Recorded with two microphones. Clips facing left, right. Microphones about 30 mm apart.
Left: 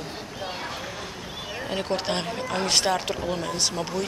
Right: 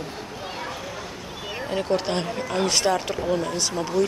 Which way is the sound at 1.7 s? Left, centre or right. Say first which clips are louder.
Right 3 dB; centre.